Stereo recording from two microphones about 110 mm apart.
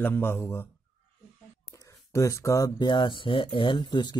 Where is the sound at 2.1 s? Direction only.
30° left (ahead or behind).